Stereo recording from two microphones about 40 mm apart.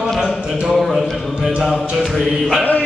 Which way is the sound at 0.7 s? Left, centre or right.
Centre.